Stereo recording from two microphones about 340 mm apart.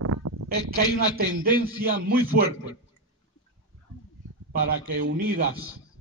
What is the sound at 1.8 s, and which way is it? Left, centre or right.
Speech, right.